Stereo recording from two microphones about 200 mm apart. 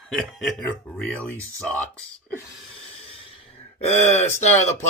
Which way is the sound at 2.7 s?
25° left (ahead or behind).